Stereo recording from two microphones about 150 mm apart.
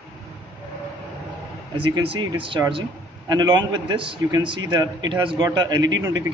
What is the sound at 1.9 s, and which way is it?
A man's voice, 30° right (ahead or behind).